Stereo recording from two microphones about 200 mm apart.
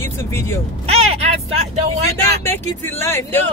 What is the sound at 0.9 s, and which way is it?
Vehicle, 30° right (ahead or behind).